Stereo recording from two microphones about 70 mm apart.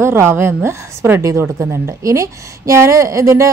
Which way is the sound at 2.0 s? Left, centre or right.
Right.